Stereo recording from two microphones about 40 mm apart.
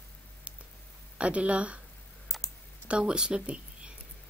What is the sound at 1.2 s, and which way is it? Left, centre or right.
Speech, right.